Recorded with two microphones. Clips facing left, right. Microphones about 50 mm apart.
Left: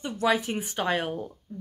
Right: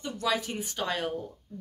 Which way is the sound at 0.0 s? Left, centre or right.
Left.